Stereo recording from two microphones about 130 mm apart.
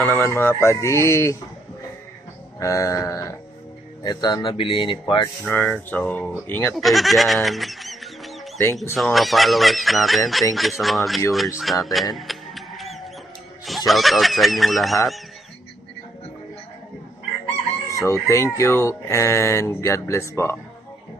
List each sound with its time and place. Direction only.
0.0 s speech: 15° left (ahead or behind)
2.6 s speech: 25° left (ahead or behind)
5.4 s speech: 10° left (ahead or behind)
6.7 s speech: centre (ahead or behind)
12.2 s mechanisms: centre (ahead or behind)
13.7 s speech: centre (ahead or behind)
18.0 s speech: 20° left (ahead or behind)